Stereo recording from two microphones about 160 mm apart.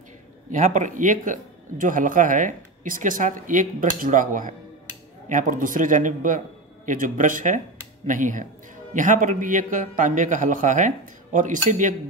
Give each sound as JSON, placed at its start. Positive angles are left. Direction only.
{"t": 0.5, "sound": "a man's voice", "side_deg": -50}